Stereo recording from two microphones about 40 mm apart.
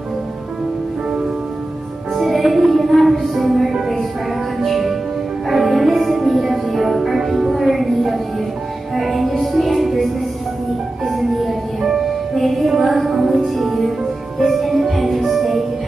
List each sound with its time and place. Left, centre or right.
2.1 s music: centre
11.1 s music: centre